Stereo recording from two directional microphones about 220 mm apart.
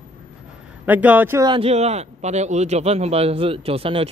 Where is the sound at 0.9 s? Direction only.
5° right (ahead or behind).